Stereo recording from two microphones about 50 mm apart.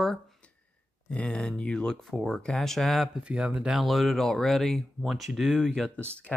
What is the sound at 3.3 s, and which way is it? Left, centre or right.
Speech, right.